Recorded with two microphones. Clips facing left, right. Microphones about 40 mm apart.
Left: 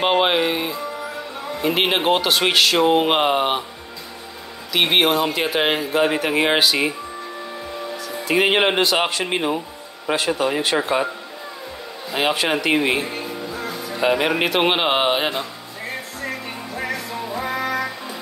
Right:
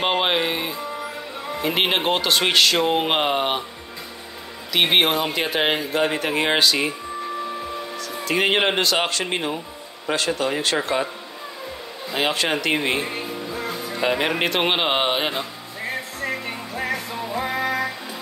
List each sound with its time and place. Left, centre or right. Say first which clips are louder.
0.0 s speech: left 3 dB; centre
4.7 s speech: left 1 dB; centre
8.3 s speech: left 3 dB; centre
12.1 s speech: left 2 dB; centre
13.0 s music: left 1 dB; right
13.9 s speech: left 3 dB; centre